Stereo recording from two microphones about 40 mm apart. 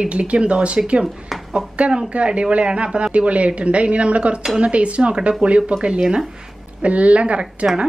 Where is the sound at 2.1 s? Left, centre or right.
Right.